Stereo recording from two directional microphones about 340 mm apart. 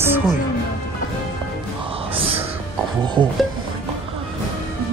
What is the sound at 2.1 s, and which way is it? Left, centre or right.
Music, centre.